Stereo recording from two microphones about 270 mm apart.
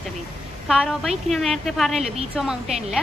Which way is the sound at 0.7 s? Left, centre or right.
Centre.